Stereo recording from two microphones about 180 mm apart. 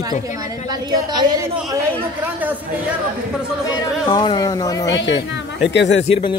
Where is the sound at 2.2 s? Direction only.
10° right (ahead or behind).